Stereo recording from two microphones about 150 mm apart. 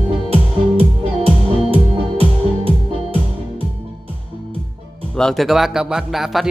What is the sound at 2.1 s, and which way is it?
Music, 40° right (ahead or behind).